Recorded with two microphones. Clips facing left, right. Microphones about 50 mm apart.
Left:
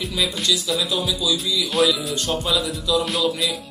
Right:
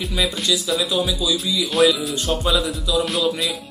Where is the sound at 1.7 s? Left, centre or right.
Centre.